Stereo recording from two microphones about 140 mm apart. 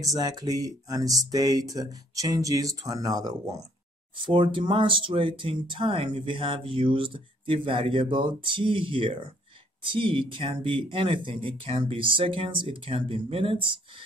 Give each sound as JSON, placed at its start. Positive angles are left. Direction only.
{"t": 0.0, "sound": "speech", "side_deg": -25}
{"t": 4.2, "sound": "speech", "side_deg": -35}